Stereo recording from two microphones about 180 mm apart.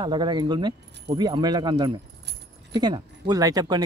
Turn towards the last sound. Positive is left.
turn(degrees=-20)  # may be behind; listen again after turning